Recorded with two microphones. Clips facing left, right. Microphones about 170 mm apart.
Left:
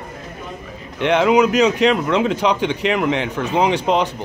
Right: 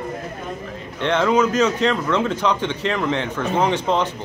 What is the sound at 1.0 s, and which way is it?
A man's voice, 15° left (ahead or behind).